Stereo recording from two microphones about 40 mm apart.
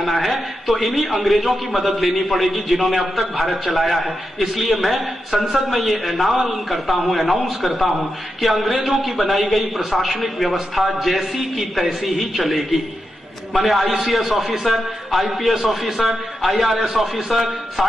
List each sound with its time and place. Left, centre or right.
0.0 s a man's voice: centre